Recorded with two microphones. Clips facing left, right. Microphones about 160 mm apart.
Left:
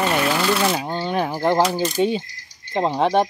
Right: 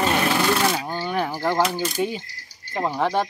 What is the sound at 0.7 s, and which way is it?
Speech, 20° left (ahead or behind).